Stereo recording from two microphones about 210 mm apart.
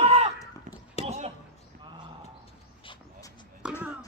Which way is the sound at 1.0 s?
30° right (ahead or behind).